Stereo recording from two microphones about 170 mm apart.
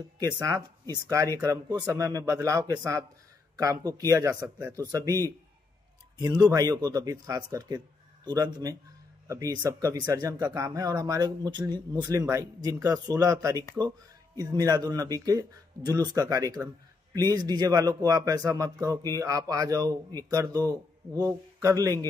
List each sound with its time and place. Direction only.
0.4 s speech: 25° right (ahead or behind)
6.1 s speech: 25° right (ahead or behind)